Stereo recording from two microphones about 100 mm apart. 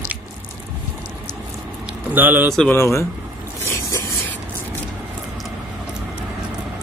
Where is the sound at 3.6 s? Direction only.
30° left (ahead or behind).